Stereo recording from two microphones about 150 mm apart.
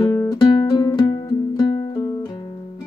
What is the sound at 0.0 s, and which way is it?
Music, 25° left (ahead or behind).